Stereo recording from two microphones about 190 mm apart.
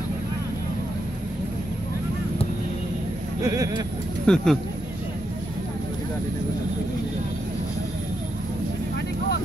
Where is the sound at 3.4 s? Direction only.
15° right (ahead or behind).